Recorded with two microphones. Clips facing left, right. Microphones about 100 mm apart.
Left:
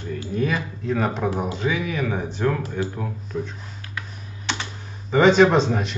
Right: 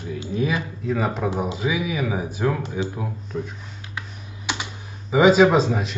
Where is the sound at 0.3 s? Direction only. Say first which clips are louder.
Even; 5° right (ahead or behind).